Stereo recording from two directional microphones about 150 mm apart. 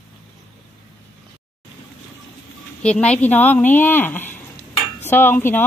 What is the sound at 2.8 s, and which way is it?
Speech, 10° left (ahead or behind).